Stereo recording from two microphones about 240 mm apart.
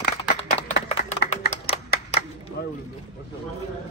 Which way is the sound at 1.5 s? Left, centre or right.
Left.